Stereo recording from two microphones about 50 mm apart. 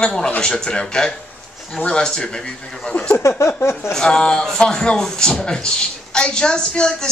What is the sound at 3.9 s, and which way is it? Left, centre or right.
A man's voice, centre.